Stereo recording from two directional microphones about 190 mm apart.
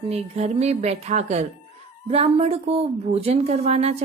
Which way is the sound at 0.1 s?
35° right (ahead or behind).